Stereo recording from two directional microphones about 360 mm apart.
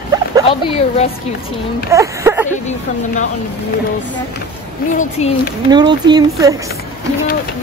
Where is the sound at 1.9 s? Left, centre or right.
Centre.